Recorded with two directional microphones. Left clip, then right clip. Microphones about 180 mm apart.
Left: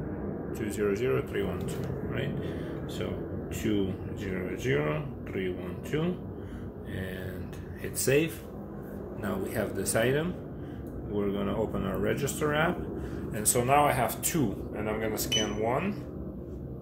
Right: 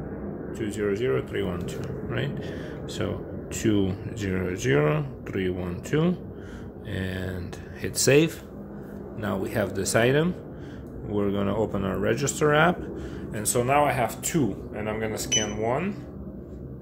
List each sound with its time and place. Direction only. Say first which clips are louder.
0.5 s speech: right 2 dB; 25° right (ahead or behind)
1.8 s speech: right 3 dB; 50° right (ahead or behind)
3.5 s speech: right 6 dB; 55° right (ahead or behind)
13.3 s speech: right 2 dB; 35° right (ahead or behind)